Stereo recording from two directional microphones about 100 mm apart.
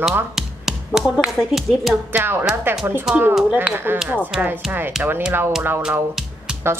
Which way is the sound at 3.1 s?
5° right (ahead or behind).